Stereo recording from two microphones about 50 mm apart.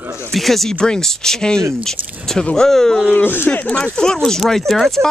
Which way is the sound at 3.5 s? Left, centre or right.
Left.